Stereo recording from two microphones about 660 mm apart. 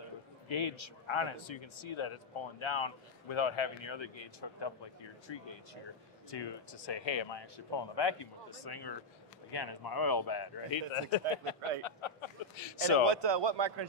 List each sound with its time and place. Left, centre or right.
0.5 s speech: left
11.0 s speech: left
11.8 s a sound: left
13.0 s a man's voice: right